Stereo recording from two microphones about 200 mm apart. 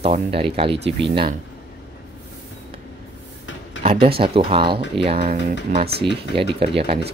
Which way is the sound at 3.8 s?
30° right (ahead or behind).